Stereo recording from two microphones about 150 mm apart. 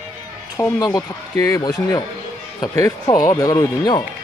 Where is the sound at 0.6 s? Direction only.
20° left (ahead or behind).